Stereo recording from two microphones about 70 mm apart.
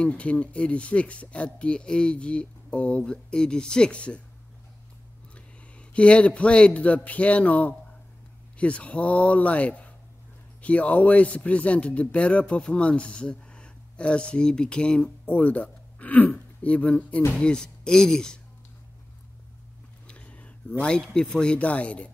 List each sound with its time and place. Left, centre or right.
0.0 s a man's voice: centre
5.3 s a man's voice: centre
20.1 s a sound: centre
20.8 s a man's voice: centre